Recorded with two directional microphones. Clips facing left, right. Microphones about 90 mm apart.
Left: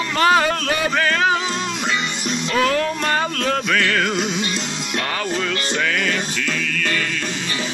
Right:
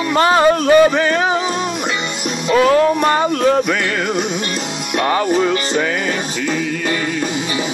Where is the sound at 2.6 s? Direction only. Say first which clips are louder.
Right 8 dB; 25° right (ahead or behind).